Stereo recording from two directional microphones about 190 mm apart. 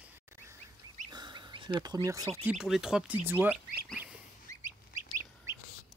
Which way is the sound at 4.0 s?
10° right (ahead or behind).